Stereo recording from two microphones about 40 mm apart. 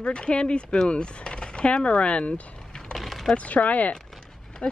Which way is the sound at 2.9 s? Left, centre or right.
Centre.